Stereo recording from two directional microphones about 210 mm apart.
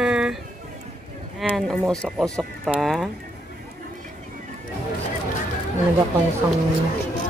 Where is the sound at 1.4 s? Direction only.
Centre (ahead or behind).